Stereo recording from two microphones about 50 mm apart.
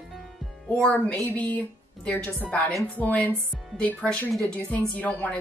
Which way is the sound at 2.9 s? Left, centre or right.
Left.